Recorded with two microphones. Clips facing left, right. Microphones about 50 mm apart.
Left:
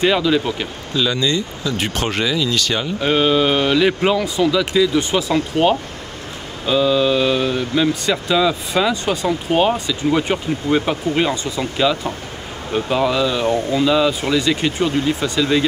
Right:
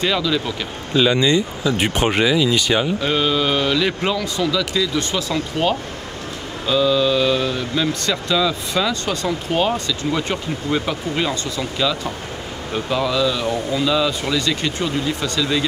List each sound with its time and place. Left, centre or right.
0.0 s speech: centre
0.9 s speech: right
3.0 s speech: centre
14.9 s speech: left
15.1 s speech: centre